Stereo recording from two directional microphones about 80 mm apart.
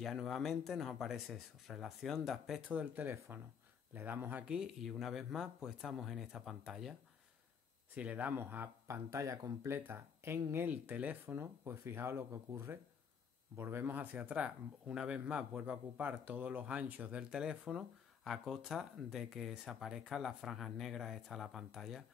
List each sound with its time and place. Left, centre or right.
0.0 s speech: centre
2.7 s speech: centre
4.6 s speech: centre
7.9 s speech: centre
8.8 s speech: right
13.6 s speech: right; by 22.0 s centre